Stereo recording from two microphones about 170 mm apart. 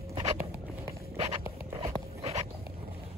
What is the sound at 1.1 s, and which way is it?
Dog, 35° right (ahead or behind).